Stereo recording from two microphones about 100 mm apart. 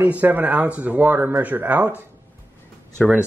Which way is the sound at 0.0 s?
15° right (ahead or behind).